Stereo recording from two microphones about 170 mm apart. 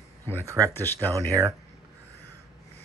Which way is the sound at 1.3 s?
20° right (ahead or behind).